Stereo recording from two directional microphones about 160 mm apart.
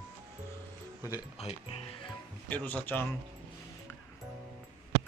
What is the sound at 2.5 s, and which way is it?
Speech, 10° left (ahead or behind).